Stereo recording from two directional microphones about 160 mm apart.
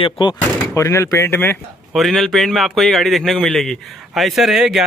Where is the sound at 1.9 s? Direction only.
Centre (ahead or behind).